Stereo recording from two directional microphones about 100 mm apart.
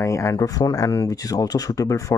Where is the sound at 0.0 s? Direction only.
30° left (ahead or behind).